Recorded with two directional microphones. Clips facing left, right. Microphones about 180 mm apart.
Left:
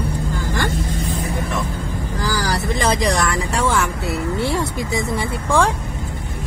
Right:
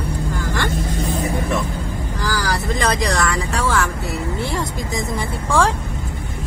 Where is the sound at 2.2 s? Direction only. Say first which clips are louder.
Left 1 dB; 20° left (ahead or behind).